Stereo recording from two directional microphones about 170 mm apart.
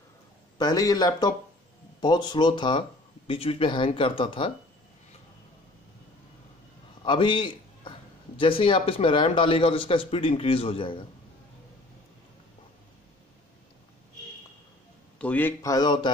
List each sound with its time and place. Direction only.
0.6 s a man's voice: 20° left (ahead or behind)
7.0 s a sound: 30° left (ahead or behind)
8.4 s a man's voice: 30° left (ahead or behind)
15.1 s a man's voice: 10° left (ahead or behind); by 16.1 s 25° left (ahead or behind)